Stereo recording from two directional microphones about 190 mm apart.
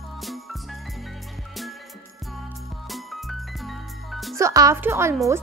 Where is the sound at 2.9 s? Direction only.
Centre (ahead or behind).